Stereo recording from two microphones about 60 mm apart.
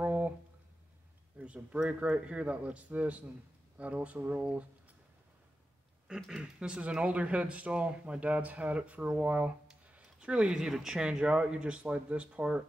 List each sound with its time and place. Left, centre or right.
0.0 s a sound: right
1.4 s speech: right
6.3 s speech: centre